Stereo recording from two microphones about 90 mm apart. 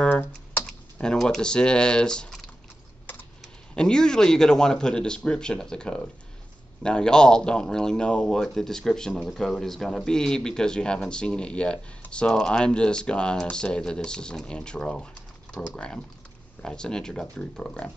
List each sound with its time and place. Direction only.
0.0 s typing: 20° left (ahead or behind)
1.0 s speech: 5° left (ahead or behind)
3.7 s speech: 10° left (ahead or behind)